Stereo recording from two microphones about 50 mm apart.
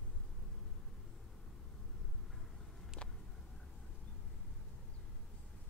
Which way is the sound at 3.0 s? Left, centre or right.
Left.